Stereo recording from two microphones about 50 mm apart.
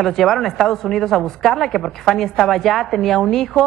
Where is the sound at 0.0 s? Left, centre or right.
Centre.